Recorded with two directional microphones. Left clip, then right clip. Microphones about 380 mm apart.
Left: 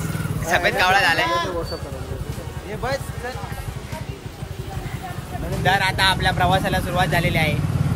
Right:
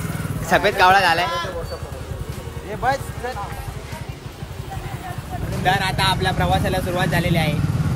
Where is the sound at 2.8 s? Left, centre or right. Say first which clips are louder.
Right 5 dB; right.